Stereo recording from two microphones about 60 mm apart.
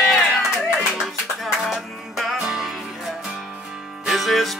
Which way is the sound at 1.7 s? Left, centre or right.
Centre.